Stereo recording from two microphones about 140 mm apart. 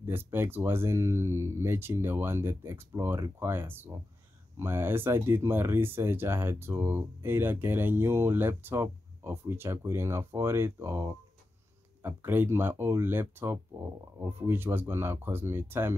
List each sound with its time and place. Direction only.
0.0 s speech: 15° right (ahead or behind)